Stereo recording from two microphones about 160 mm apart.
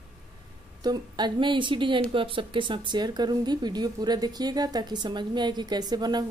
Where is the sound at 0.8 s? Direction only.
25° right (ahead or behind).